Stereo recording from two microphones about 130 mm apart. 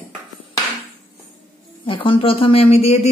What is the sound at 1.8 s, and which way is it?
Speech, 40° left (ahead or behind).